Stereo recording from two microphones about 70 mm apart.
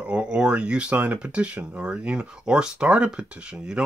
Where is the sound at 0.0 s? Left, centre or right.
Centre.